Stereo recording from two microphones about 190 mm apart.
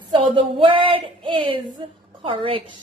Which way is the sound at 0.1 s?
25° right (ahead or behind).